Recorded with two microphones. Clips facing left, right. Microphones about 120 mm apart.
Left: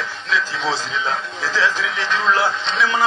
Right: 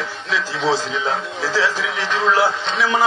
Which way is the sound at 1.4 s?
15° right (ahead or behind).